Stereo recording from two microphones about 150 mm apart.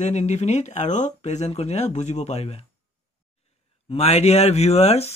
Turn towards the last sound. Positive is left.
turn(degrees=45)  # may be behind; listen again after turning